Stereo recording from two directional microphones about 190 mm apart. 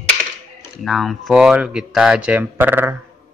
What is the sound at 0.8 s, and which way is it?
Speech, centre (ahead or behind).